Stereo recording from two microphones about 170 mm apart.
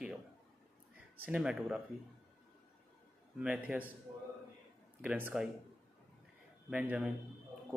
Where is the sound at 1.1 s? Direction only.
10° right (ahead or behind).